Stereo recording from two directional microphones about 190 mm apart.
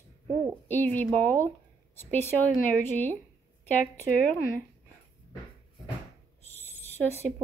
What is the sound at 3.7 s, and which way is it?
Speech, 10° left (ahead or behind).